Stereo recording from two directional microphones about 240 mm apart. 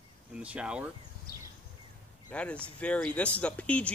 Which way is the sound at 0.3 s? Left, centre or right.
Centre.